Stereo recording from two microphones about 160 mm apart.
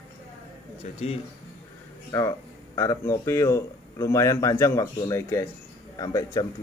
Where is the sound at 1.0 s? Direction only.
45° left (ahead or behind).